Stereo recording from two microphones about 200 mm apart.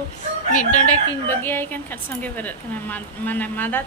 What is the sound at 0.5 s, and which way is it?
Speech, 40° left (ahead or behind).